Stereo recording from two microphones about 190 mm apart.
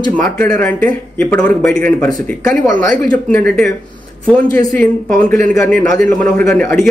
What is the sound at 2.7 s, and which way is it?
Speech, 45° right (ahead or behind).